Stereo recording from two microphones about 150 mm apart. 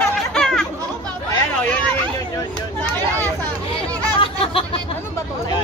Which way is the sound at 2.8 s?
15° left (ahead or behind).